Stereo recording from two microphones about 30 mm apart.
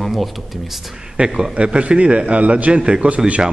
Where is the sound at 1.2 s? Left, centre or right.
Right.